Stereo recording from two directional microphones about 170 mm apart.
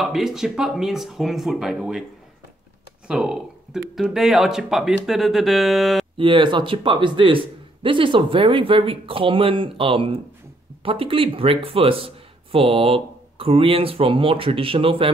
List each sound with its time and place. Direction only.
0.0 s speech: centre (ahead or behind)
3.1 s speech: 5° right (ahead or behind)
6.1 s speech: 30° right (ahead or behind)